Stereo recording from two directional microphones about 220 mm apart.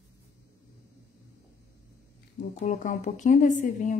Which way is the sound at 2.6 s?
35° left (ahead or behind).